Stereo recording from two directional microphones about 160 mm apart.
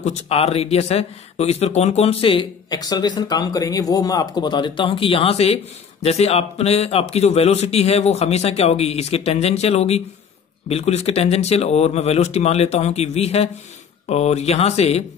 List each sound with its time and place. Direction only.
0.0 s speech: 40° left (ahead or behind)